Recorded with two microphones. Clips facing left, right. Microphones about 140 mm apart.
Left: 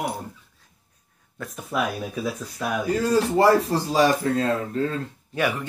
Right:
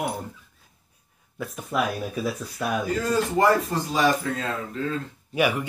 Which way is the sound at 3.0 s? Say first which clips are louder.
Left 3 dB; 35° left (ahead or behind).